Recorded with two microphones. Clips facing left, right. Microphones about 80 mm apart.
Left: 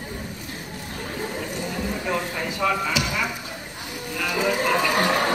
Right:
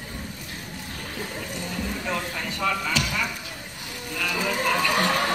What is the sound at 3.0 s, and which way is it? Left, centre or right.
Music, centre.